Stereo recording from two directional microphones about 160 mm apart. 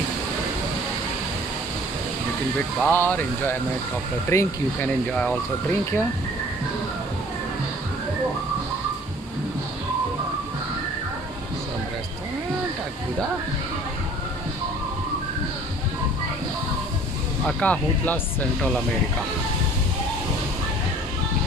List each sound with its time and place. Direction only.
2.8 s speech: 10° left (ahead or behind)
5.1 s speech: 10° left (ahead or behind)
17.5 s speech: 10° left (ahead or behind)